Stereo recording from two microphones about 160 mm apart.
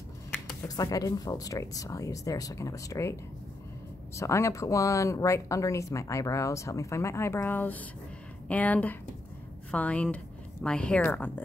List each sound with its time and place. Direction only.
0.7 s speech: 20° left (ahead or behind)
4.2 s speech: 20° left (ahead or behind)